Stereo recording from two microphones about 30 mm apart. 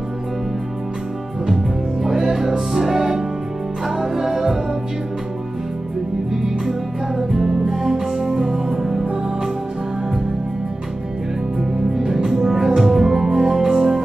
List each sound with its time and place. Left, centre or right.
1.5 s music: centre
6.3 s music: centre
12.4 s music: centre